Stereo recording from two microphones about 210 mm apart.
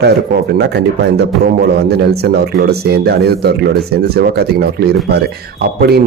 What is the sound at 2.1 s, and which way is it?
Speech, 50° right (ahead or behind).